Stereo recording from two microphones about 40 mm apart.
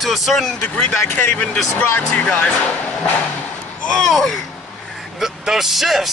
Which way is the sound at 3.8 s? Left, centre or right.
Centre.